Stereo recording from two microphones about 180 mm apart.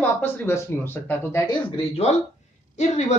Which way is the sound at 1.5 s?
35° left (ahead or behind).